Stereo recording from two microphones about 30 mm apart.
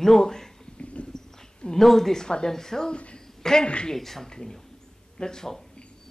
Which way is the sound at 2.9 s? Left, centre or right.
Left.